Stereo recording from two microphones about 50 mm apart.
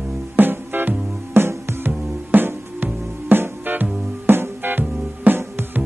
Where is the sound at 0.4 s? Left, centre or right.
Right.